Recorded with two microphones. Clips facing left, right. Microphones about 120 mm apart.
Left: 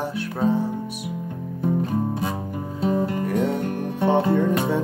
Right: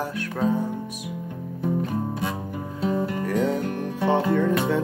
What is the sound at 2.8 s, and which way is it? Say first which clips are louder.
Music: left 2 dB; 30° left (ahead or behind).